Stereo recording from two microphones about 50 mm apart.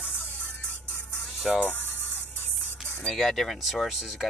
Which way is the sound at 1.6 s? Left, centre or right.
Left.